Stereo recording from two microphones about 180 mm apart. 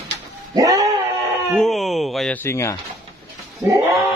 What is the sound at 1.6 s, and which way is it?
Speech, centre (ahead or behind).